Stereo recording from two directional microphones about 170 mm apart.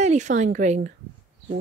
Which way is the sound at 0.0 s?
45° right (ahead or behind).